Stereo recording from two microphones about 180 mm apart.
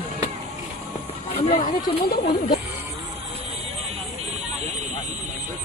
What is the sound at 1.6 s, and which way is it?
Speech, 50° left (ahead or behind).